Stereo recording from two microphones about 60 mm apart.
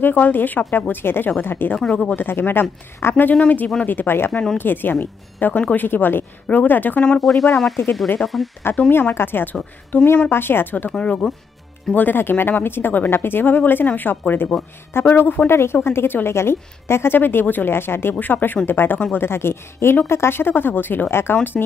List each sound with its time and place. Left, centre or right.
0.0 s a woman's voice: left
1.8 s speech: centre
2.1 s a woman's voice: left
7.2 s speech: centre
8.6 s a woman's voice: left
10.9 s speech: centre
11.9 s a woman's voice: left
21.6 s a woman's voice: left